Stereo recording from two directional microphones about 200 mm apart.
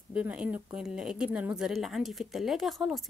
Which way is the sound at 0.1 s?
5° right (ahead or behind).